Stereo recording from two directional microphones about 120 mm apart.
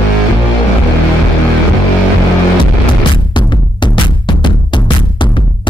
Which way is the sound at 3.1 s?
40° left (ahead or behind).